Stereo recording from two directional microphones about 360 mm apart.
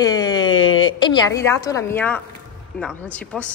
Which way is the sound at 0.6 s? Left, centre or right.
Left.